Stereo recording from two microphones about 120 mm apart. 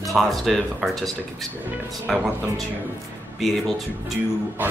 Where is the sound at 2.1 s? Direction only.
5° right (ahead or behind).